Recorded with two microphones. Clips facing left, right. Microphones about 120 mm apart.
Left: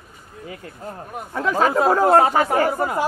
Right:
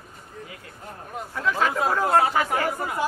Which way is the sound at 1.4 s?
40° left (ahead or behind).